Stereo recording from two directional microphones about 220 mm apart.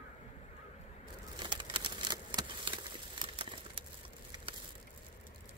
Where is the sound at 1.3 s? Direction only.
20° right (ahead or behind).